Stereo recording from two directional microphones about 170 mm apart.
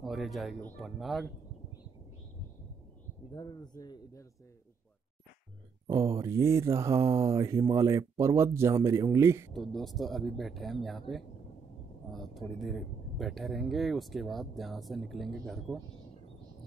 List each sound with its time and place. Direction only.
0.0 s speech: centre (ahead or behind)
3.3 s speech: 25° left (ahead or behind)
5.9 s speech: 15° right (ahead or behind)
9.5 s speech: centre (ahead or behind)